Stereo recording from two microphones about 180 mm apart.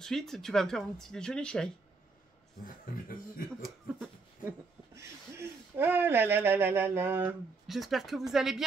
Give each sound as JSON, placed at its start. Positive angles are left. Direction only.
{"t": 0.0, "sound": "speech", "side_deg": 5}
{"t": 2.6, "sound": "speech", "side_deg": 50}
{"t": 3.4, "sound": "a sound", "side_deg": 5}
{"t": 4.5, "sound": "speech", "side_deg": -15}